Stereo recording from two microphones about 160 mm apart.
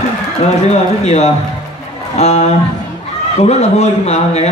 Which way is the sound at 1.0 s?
45° left (ahead or behind).